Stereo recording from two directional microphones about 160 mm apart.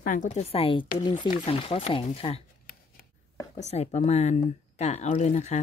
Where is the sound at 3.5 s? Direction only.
45° left (ahead or behind).